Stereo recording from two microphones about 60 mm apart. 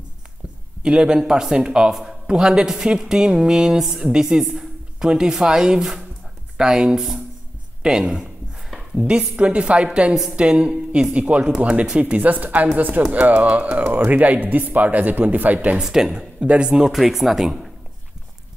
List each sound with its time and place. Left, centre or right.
0.8 s a man's voice: centre
15.8 s a man's voice: centre
16.9 s speech: centre